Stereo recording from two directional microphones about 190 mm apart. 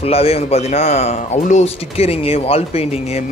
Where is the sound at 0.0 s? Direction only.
30° left (ahead or behind).